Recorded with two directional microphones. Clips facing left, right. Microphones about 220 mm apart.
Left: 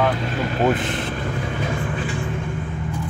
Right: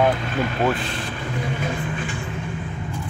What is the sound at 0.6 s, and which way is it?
Speech, 20° left (ahead or behind).